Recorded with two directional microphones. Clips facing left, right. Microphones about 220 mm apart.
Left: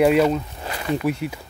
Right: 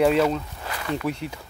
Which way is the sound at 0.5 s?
25° left (ahead or behind).